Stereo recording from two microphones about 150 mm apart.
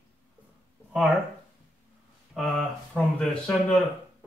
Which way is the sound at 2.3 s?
5° left (ahead or behind).